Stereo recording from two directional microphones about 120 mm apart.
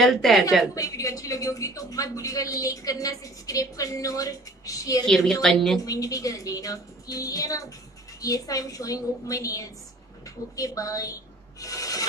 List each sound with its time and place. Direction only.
0.0 s a woman's voice: centre (ahead or behind)
0.7 s a woman's voice: 30° left (ahead or behind)
5.0 s a woman's voice: 5° left (ahead or behind)
5.9 s a woman's voice: 30° left (ahead or behind)